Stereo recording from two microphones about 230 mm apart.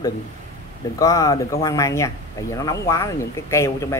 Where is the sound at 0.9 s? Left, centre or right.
Centre.